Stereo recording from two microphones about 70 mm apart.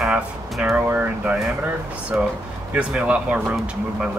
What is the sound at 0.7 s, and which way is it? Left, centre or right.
Speech, right.